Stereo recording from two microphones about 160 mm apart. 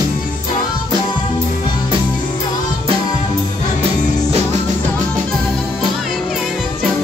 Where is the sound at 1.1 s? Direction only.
30° left (ahead or behind).